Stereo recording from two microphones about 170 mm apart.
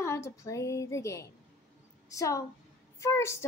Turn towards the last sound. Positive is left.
turn(degrees=15)  # may be behind; listen again after turning